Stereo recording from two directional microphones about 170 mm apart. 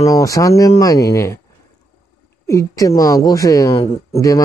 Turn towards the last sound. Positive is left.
turn(degrees=20)  # may be behind; listen again after turning